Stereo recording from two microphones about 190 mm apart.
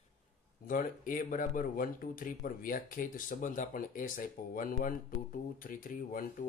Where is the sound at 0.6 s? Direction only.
45° left (ahead or behind).